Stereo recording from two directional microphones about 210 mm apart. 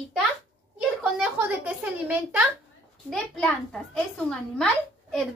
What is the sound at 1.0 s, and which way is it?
A woman's voice, 5° right (ahead or behind).